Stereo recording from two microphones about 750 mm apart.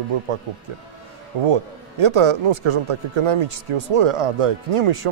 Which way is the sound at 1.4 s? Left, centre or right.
Right.